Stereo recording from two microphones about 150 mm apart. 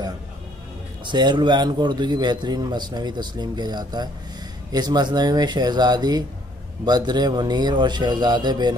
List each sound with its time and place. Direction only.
1.0 s a man's voice: 30° right (ahead or behind)